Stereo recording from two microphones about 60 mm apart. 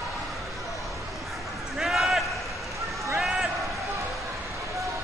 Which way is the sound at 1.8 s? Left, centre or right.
Centre.